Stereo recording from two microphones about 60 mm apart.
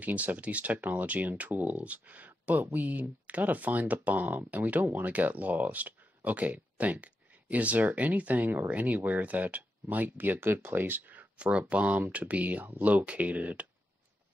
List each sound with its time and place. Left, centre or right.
0.0 s speech: right